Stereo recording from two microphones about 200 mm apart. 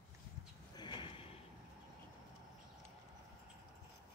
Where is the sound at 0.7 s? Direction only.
20° left (ahead or behind).